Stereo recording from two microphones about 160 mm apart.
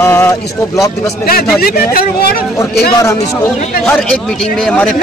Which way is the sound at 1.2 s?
70° left (ahead or behind).